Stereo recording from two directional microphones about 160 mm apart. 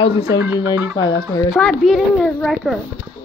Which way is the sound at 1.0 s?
25° left (ahead or behind).